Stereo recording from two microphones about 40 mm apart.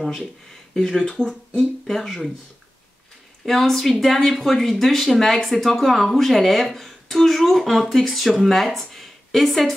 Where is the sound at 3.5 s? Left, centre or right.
Centre.